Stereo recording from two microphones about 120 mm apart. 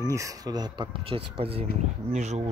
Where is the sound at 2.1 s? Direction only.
70° right (ahead or behind).